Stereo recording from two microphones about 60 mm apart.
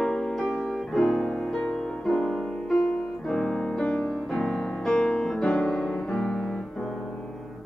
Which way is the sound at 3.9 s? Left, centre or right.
Centre.